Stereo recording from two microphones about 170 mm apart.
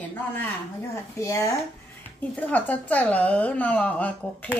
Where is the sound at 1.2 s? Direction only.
20° left (ahead or behind).